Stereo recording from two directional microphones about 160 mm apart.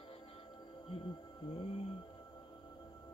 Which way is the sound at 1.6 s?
35° left (ahead or behind).